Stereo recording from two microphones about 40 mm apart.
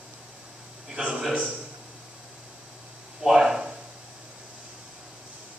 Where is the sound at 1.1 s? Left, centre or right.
Centre.